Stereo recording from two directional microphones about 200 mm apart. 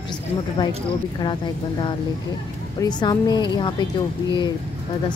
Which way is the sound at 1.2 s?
25° left (ahead or behind).